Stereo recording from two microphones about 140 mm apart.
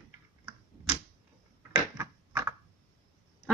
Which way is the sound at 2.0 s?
20° right (ahead or behind).